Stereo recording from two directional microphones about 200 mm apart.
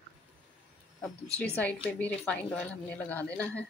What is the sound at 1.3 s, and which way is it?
A woman's voice, 5° left (ahead or behind).